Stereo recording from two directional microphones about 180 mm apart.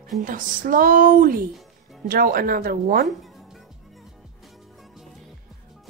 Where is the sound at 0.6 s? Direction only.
50° right (ahead or behind).